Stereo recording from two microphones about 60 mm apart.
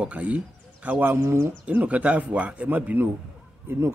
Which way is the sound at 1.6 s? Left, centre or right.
Right.